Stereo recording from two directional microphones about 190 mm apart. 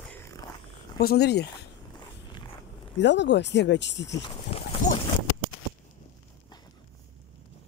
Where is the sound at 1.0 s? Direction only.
55° left (ahead or behind).